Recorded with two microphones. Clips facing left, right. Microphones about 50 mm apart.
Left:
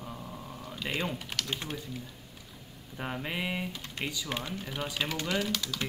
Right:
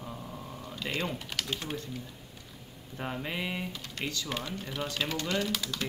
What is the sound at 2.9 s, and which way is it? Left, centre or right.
Speech, centre.